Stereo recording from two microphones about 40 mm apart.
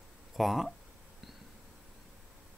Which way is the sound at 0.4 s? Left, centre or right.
Centre.